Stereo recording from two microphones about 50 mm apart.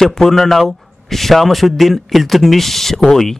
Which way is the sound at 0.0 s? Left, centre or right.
Centre.